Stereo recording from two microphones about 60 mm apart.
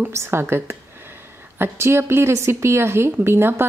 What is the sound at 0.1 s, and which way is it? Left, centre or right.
A woman's voice, right.